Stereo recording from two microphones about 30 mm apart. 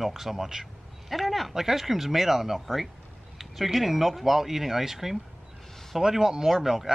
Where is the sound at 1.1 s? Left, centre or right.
Centre.